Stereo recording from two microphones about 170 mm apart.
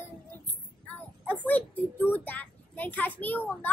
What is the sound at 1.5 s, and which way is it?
A child's voice, 10° left (ahead or behind).